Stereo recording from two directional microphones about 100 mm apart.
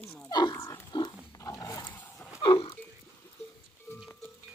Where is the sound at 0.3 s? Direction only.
45° left (ahead or behind).